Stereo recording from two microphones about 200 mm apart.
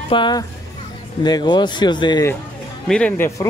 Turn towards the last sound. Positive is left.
turn(degrees=5)  # may be behind; listen again after turning